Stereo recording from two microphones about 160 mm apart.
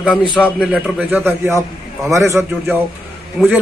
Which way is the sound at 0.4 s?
5° left (ahead or behind).